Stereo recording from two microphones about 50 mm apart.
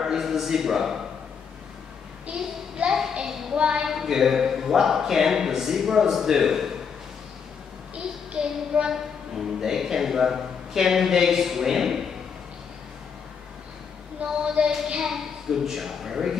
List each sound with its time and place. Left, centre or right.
0.0 s a man's voice: centre
2.2 s child singing: centre
3.2 s a sound: centre
3.9 s speech: centre
7.9 s a child's voice: right
14.2 s a woman's voice: centre